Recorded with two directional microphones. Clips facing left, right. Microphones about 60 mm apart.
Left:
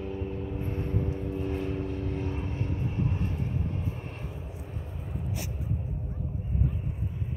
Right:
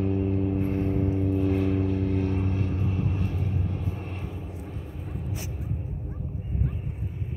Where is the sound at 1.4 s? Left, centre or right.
Right.